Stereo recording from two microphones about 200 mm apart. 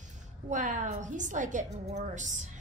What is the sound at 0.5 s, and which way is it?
A woman's voice, 40° right (ahead or behind).